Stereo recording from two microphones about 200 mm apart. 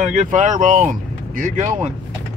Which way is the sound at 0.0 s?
35° right (ahead or behind).